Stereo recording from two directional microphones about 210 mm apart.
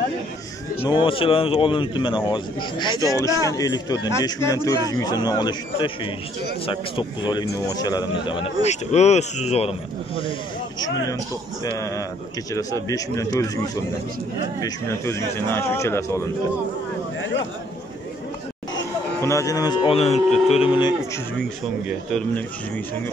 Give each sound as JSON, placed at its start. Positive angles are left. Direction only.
{"t": 0.8, "sound": "speech", "side_deg": 25}
{"t": 8.6, "sound": "speech", "side_deg": 30}
{"t": 13.2, "sound": "speech", "side_deg": 15}
{"t": 19.2, "sound": "speech", "side_deg": 15}
{"t": 20.2, "sound": "speech", "side_deg": 0}
{"t": 20.5, "sound": "speech", "side_deg": 25}
{"t": 21.4, "sound": "speech", "side_deg": 0}